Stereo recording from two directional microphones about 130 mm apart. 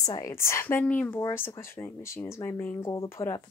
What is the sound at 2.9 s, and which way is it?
Speech, 20° left (ahead or behind).